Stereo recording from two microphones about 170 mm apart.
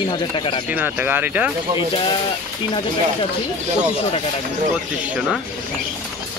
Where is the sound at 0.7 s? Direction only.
10° right (ahead or behind).